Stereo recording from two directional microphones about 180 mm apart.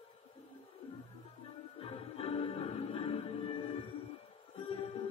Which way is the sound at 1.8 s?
30° left (ahead or behind).